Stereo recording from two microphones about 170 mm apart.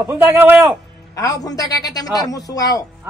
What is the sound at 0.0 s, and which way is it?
Speech, 10° right (ahead or behind).